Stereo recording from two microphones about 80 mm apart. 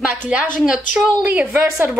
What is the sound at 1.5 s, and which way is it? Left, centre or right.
Speech, right.